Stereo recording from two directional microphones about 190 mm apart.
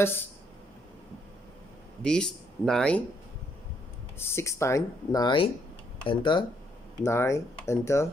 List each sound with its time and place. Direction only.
2.0 s speech: 5° left (ahead or behind)
4.2 s speech: 15° left (ahead or behind)
7.0 s speech: 15° left (ahead or behind)